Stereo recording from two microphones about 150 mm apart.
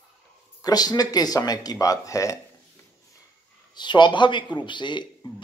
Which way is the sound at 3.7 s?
30° left (ahead or behind).